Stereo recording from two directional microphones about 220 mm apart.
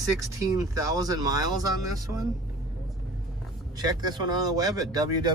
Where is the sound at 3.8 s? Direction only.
20° right (ahead or behind).